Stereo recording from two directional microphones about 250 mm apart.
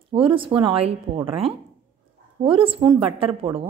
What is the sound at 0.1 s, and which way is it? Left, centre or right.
A woman's voice, right.